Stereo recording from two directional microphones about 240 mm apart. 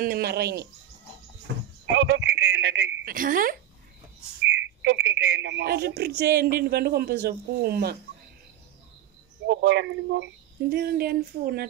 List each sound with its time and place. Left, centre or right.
0.0 s speech: right
1.9 s speech: right
4.5 s speech: right
9.5 s speech: right